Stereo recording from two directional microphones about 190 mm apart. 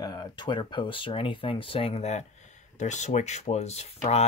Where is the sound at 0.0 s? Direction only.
20° left (ahead or behind).